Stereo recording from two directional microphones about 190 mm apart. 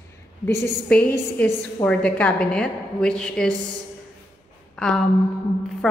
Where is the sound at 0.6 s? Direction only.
5° left (ahead or behind).